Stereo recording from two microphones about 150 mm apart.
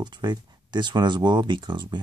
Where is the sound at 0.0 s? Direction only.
30° right (ahead or behind).